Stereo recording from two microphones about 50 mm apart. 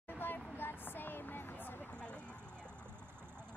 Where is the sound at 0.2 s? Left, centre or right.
Left.